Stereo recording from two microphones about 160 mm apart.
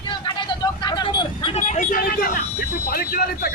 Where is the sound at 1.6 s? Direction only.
50° left (ahead or behind).